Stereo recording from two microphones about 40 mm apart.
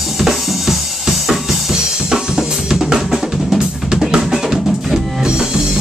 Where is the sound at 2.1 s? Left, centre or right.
Centre.